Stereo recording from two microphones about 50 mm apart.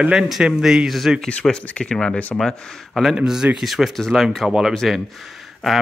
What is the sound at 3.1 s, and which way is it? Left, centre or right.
Speech, centre.